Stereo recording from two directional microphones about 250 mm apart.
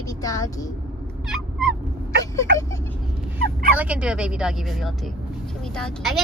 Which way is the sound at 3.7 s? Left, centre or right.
Centre.